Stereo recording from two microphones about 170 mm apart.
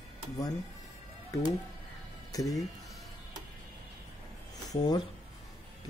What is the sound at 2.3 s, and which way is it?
Speech, 20° left (ahead or behind).